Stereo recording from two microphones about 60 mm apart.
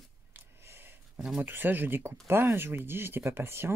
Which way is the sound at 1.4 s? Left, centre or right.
Right.